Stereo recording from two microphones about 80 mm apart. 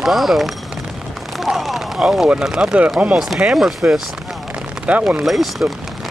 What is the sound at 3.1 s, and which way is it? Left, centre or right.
Speech, centre.